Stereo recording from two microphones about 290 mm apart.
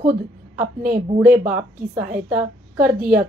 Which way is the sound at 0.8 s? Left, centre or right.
Right.